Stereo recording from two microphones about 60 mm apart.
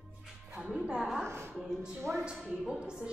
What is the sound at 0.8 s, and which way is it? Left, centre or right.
Music, centre.